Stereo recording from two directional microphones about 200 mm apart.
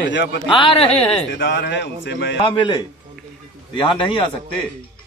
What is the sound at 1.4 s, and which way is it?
Speech, 60° left (ahead or behind).